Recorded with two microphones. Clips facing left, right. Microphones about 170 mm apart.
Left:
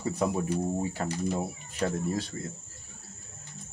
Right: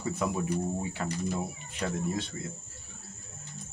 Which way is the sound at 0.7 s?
40° left (ahead or behind).